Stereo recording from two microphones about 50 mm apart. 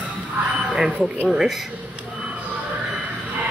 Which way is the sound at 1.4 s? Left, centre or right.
Centre.